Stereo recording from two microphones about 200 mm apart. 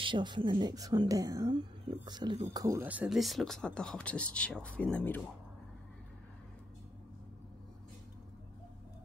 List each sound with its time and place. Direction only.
0.0 s a woman's voice: 25° right (ahead or behind); by 5.2 s 10° left (ahead or behind)